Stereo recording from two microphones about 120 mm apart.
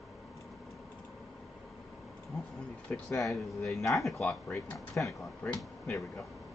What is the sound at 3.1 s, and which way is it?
Speech, 25° left (ahead or behind).